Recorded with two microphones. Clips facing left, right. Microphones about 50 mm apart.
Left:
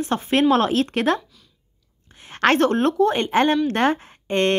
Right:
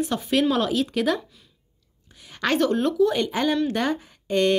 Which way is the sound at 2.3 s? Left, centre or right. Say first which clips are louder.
Left 4 dB; left.